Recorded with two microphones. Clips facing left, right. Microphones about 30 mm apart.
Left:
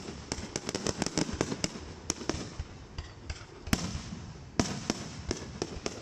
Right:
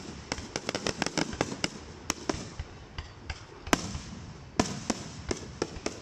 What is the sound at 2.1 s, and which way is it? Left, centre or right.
Fireworks, centre.